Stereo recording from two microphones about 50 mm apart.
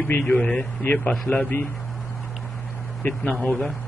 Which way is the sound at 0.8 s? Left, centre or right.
Left.